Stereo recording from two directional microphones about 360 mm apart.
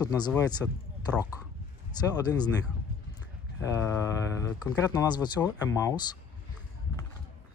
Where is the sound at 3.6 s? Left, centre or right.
Centre.